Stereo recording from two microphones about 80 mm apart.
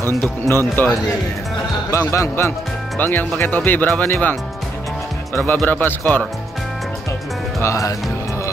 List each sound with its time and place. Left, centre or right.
0.5 s speech: left
1.9 s speech: left
3.0 s speech: left
5.7 s speech: left
7.6 s speech: left